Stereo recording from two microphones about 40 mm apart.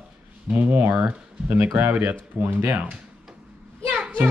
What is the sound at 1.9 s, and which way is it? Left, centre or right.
Speech, right.